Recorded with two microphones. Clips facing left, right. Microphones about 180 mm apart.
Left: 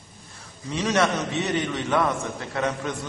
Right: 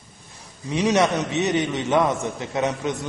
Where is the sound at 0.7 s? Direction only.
15° right (ahead or behind).